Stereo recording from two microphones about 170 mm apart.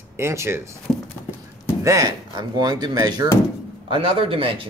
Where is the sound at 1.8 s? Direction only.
20° right (ahead or behind).